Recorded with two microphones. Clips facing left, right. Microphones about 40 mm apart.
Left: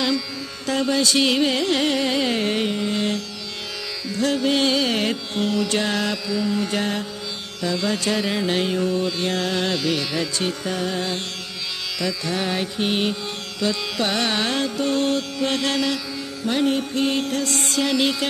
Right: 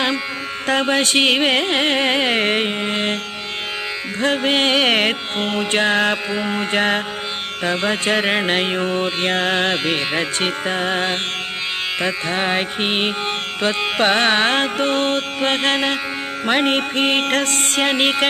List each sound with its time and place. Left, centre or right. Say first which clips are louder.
0.7 s music: right 3 dB; right
4.2 s music: right 2 dB; right